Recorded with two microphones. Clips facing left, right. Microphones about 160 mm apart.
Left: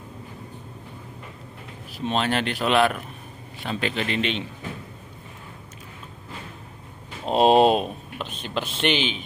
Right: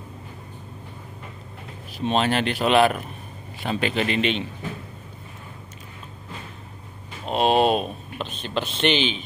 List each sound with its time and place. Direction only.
2.0 s speech: 5° right (ahead or behind)
7.2 s speech: 30° left (ahead or behind)
8.2 s speech: 10° left (ahead or behind)